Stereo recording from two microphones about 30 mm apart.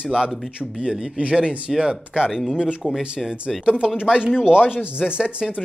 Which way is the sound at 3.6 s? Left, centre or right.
Right.